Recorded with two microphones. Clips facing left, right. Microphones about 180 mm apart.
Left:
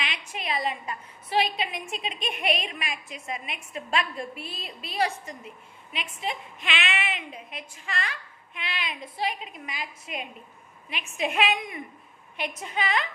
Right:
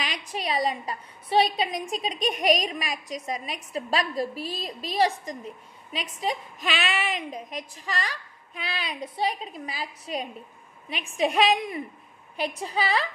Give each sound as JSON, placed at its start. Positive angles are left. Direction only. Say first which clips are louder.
{"t": 0.0, "sound": "a woman's voice", "louder": "right 4 dB", "side_deg": -35}